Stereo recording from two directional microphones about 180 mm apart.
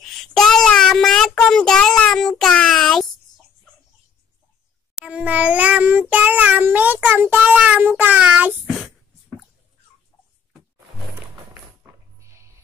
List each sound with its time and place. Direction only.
0.0 s child singing: centre (ahead or behind)
4.9 s child singing: 5° right (ahead or behind)
8.6 s a sound: centre (ahead or behind)
12.2 s music: 15° right (ahead or behind)